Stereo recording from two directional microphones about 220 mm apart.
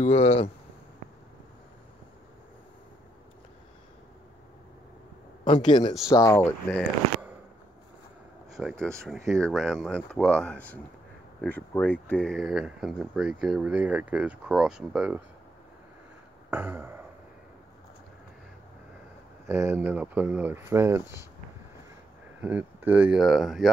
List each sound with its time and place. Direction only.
0.0 s speech: 25° left (ahead or behind)
5.4 s speech: 20° left (ahead or behind)
8.5 s speech: centre (ahead or behind)
16.4 s a sound: 10° right (ahead or behind)
19.4 s speech: 10° right (ahead or behind)
22.4 s speech: 5° right (ahead or behind)